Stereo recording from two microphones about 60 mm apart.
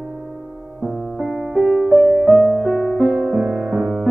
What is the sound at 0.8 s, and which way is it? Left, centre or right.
Music, centre.